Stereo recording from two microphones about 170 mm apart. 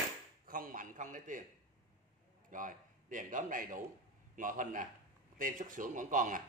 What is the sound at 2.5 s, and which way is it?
A man's voice, 50° right (ahead or behind).